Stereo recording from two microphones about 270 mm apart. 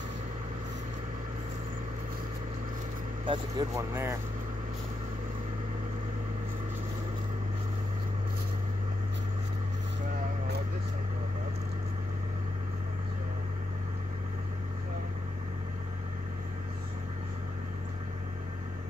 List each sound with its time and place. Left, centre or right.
3.3 s speech: centre